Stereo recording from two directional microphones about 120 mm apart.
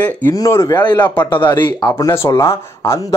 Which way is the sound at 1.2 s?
40° left (ahead or behind).